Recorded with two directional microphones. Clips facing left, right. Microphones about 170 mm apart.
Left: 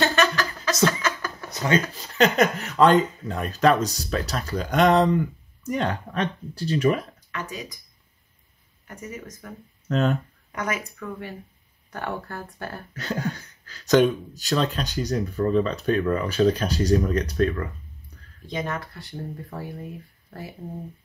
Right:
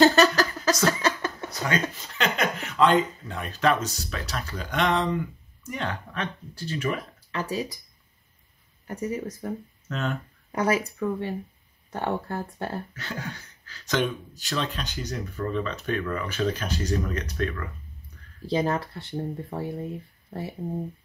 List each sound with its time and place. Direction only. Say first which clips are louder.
0.0 s a sound: right 4 dB; 35° right (ahead or behind)
1.7 s speech: left 5 dB; 25° left (ahead or behind)
2.1 s speech: left 7 dB; 40° left (ahead or behind)
7.2 s speech: right 5 dB; 35° right (ahead or behind)
8.8 s speech: right 7 dB; 35° right (ahead or behind)
9.8 s speech: left 7 dB; 35° left (ahead or behind)
10.5 s speech: right 5 dB; 35° right (ahead or behind)
12.9 s speech: left 7 dB; 40° left (ahead or behind)
18.4 s speech: right 5 dB; 30° right (ahead or behind)